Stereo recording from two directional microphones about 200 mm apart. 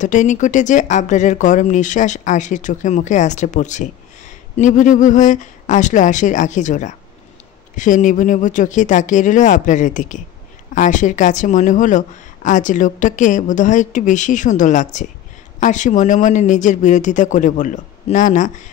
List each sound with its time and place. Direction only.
0.0 s speech: 40° left (ahead or behind)